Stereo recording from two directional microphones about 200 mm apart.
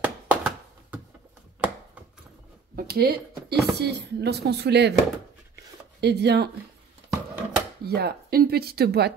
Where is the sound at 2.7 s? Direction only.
50° right (ahead or behind).